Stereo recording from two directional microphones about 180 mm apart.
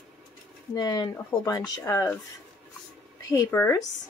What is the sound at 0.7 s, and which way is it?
Speech, 20° left (ahead or behind).